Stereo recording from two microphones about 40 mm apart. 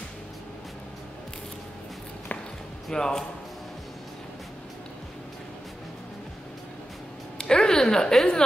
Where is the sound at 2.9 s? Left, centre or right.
Centre.